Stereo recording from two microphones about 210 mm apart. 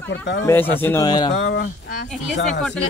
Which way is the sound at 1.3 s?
60° left (ahead or behind).